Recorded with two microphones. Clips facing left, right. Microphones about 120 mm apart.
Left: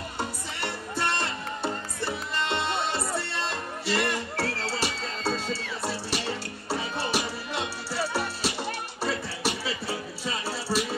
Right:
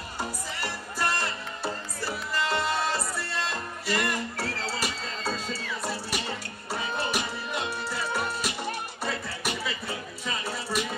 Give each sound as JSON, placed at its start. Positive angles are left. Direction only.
{"t": 0.2, "sound": "music", "side_deg": 25}